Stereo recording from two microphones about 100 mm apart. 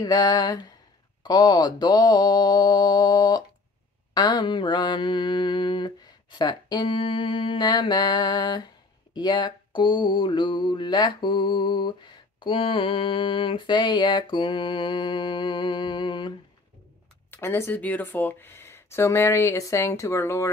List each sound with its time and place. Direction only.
0.0 s mantra: 40° left (ahead or behind)
7.0 s mantra: 60° left (ahead or behind)
17.3 s speech: 25° left (ahead or behind)